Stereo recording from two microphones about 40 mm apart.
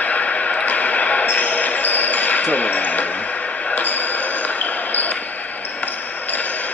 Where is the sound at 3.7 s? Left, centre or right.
Left.